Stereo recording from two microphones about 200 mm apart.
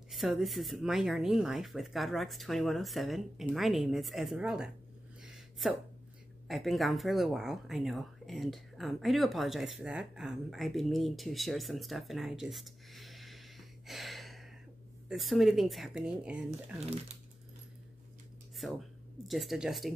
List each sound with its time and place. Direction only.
0.1 s speech: centre (ahead or behind)
5.2 s a sound: centre (ahead or behind)
6.4 s speech: centre (ahead or behind)
16.4 s speech: 35° right (ahead or behind)
18.6 s speech: centre (ahead or behind)